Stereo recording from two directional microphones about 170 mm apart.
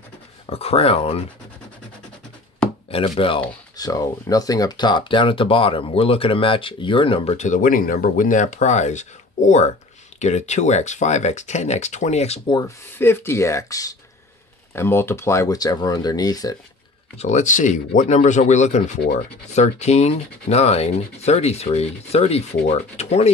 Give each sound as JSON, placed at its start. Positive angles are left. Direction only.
{"t": 0.5, "sound": "speech", "side_deg": 35}
{"t": 2.9, "sound": "speech", "side_deg": 30}
{"t": 12.5, "sound": "speech", "side_deg": 15}
{"t": 17.2, "sound": "speech", "side_deg": 45}